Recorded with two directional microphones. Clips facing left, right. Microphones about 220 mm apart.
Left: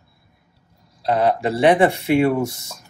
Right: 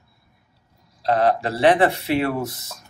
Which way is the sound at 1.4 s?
15° left (ahead or behind).